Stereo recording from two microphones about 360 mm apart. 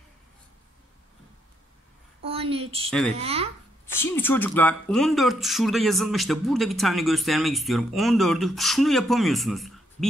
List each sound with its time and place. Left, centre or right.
2.2 s a sound: centre
3.2 s speech: centre
3.8 s speech: centre